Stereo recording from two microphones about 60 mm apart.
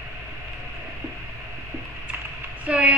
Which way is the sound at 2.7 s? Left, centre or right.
Right.